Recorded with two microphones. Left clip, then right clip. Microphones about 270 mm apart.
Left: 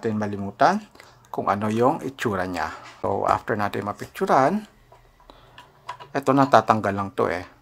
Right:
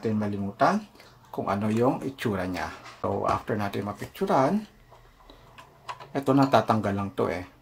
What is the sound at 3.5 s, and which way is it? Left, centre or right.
Speech, left.